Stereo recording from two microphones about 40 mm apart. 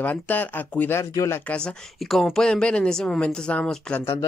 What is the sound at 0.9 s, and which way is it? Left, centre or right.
Speech, left.